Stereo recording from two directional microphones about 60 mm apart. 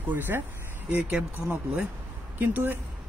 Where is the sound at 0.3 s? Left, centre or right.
Right.